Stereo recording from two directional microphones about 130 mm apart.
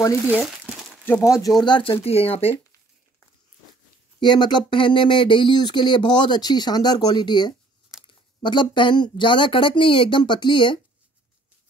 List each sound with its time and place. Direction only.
0.3 s crumpling: 10° right (ahead or behind)
1.0 s speech: 20° left (ahead or behind)
1.6 s speech: 40° left (ahead or behind)
4.2 s speech: 35° left (ahead or behind)